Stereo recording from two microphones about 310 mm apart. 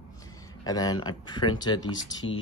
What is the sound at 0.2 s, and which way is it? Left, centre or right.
Speech, centre.